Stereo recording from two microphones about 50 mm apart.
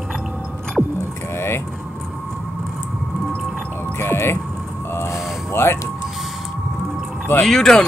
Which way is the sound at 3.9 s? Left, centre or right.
Left.